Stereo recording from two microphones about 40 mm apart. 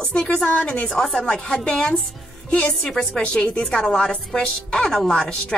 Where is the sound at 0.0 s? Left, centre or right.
Centre.